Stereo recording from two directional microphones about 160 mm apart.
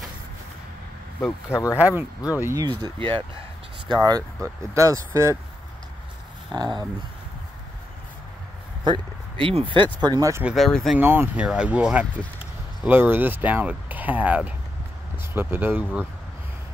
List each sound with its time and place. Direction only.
1.2 s speech: 15° left (ahead or behind)
1.8 s speech: 10° right (ahead or behind)
6.5 s speech: 25° right (ahead or behind)
8.8 s speech: 30° right (ahead or behind)
10.5 s speech: centre (ahead or behind)
11.0 s speech: 10° right (ahead or behind)